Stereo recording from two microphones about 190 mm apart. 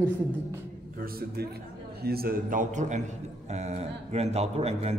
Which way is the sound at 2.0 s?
50° right (ahead or behind).